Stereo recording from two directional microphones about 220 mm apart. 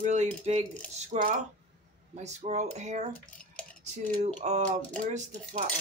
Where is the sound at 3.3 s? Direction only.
5° left (ahead or behind).